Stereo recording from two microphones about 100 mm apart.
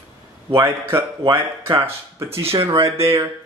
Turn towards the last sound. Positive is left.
turn(degrees=-30)  # may be behind; listen again after turning